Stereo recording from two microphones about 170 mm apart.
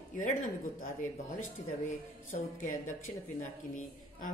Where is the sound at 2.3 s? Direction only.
50° left (ahead or behind).